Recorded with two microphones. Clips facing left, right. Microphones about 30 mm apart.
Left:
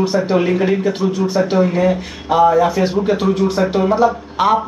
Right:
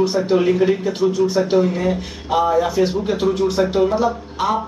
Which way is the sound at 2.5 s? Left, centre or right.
Left.